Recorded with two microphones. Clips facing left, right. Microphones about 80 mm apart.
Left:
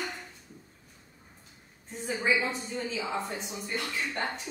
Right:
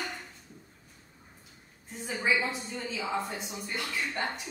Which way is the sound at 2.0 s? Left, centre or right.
Centre.